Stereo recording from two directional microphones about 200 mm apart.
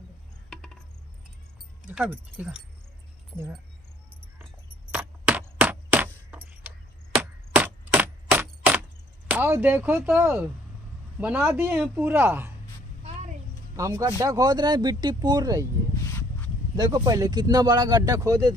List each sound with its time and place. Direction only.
1.9 s a man's voice: 10° right (ahead or behind)
4.9 s a sound: 10° right (ahead or behind)
9.3 s a man's voice: 10° right (ahead or behind)
13.7 s speech: 15° right (ahead or behind)
16.7 s speech: 20° right (ahead or behind)